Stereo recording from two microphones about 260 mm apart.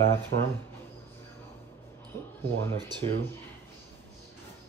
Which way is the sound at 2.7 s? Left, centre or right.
Centre.